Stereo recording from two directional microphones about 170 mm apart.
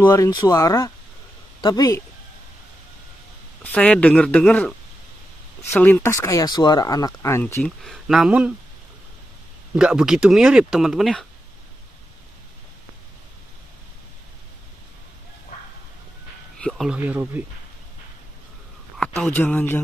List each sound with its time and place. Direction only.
0.0 s speech: 15° left (ahead or behind)
3.7 s speech: 5° left (ahead or behind)
7.6 s speech: centre (ahead or behind)
9.8 s speech: 5° right (ahead or behind)
16.5 s speech: 5° left (ahead or behind)
18.9 s speech: 5° left (ahead or behind)